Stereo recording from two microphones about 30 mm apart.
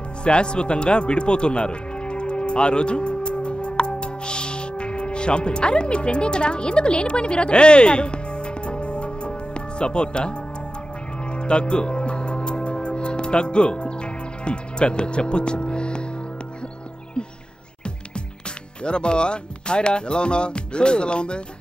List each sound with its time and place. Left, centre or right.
0.2 s music: left
11.3 s music: left
18.9 s speech: left